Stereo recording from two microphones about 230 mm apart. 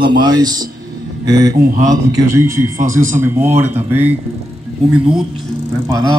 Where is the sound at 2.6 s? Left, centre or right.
Right.